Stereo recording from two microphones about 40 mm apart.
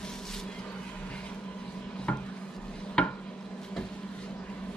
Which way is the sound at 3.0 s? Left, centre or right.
Left.